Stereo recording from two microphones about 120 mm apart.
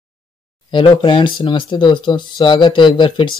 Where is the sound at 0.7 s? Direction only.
40° left (ahead or behind).